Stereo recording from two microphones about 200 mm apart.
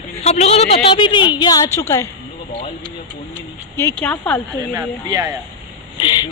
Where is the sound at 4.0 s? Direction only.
10° left (ahead or behind).